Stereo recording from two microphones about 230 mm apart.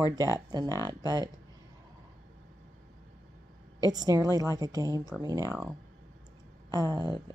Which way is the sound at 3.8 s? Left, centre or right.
Centre.